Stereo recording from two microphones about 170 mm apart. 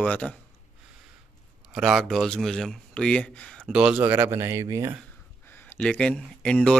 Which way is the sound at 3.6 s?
5° right (ahead or behind).